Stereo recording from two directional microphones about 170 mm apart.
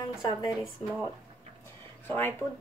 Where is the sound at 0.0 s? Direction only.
20° left (ahead or behind).